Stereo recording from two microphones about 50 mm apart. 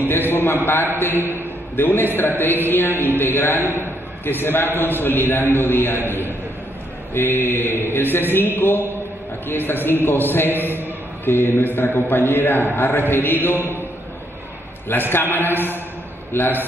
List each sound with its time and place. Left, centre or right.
0.3 s a sound: left
1.8 s a man's voice: left
7.2 s a man's voice: left
14.9 s a man's voice: left